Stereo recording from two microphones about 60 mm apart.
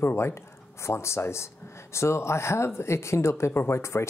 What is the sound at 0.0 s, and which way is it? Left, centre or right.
Speech, left.